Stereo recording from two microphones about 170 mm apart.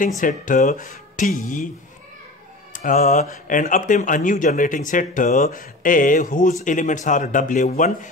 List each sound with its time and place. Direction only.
0.2 s speech: 50° left (ahead or behind)
2.7 s speech: 50° left (ahead or behind)